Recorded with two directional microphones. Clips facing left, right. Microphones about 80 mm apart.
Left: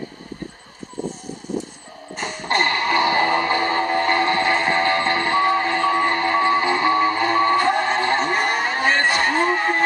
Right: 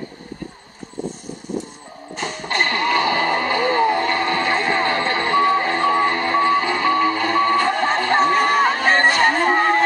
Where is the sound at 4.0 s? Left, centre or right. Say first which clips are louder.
Left 1 dB; left.